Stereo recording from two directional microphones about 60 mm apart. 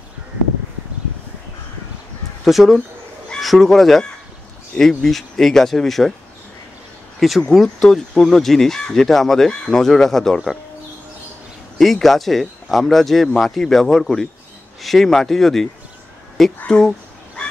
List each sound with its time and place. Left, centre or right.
2.4 s speech: centre
7.2 s speech: centre
11.8 s speech: centre
16.5 s speech: centre